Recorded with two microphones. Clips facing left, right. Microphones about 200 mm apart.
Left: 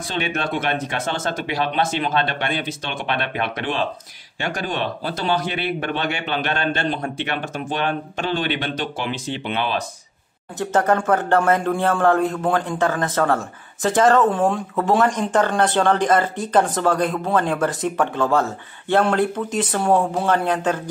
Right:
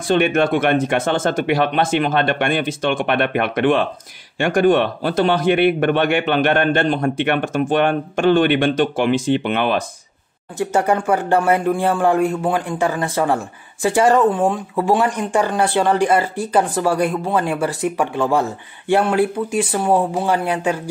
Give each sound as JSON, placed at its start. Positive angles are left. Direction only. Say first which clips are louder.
{"t": 0.1, "sound": "a man's voice", "louder": "right 9 dB", "side_deg": -55}
{"t": 10.6, "sound": "speech", "louder": "right 1 dB", "side_deg": -10}